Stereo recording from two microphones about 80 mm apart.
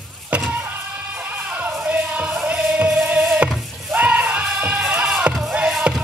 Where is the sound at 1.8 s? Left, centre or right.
Centre.